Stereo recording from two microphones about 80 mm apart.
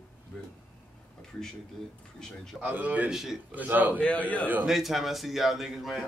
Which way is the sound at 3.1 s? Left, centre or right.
Centre.